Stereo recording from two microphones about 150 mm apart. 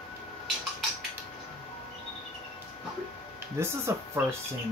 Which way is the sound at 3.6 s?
15° right (ahead or behind).